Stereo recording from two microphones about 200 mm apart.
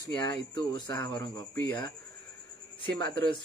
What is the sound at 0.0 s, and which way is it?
Speech, 20° left (ahead or behind).